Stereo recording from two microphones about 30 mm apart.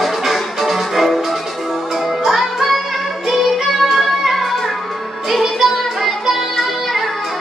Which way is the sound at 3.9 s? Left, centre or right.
Centre.